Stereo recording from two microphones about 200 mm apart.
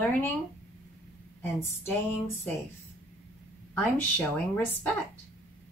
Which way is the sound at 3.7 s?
10° left (ahead or behind).